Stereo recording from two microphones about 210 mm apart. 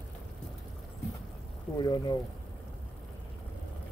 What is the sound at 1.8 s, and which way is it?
Speech, 20° left (ahead or behind).